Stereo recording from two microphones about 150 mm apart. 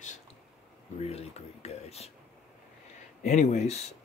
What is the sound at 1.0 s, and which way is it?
Speech, 45° left (ahead or behind).